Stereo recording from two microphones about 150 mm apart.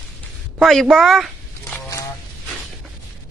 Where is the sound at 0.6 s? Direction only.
Centre (ahead or behind).